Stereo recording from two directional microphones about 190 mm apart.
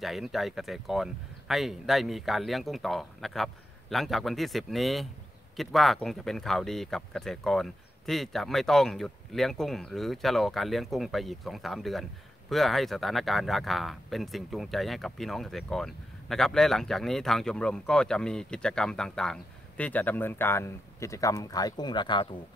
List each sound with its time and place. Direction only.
0.0 s speech: centre (ahead or behind); by 22.3 s 25° left (ahead or behind)